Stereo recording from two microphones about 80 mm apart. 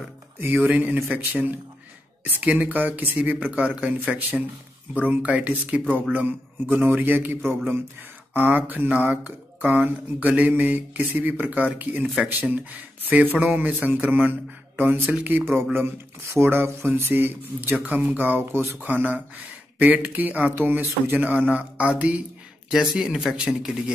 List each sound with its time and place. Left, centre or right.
0.4 s speech: right
13.1 s speech: centre